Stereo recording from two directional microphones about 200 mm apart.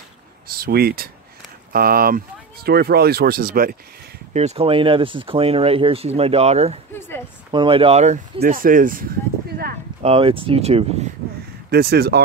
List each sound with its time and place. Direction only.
0.5 s speech: 50° right (ahead or behind)
4.3 s speech: 35° right (ahead or behind)
6.9 s speech: 10° left (ahead or behind)
7.5 s speech: 25° right (ahead or behind)
8.4 s speech: 45° right (ahead or behind)
10.0 s speech: 25° right (ahead or behind)
11.7 s speech: 50° right (ahead or behind)